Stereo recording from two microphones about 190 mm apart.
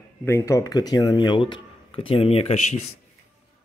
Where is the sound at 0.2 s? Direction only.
15° left (ahead or behind); by 2.8 s 35° left (ahead or behind).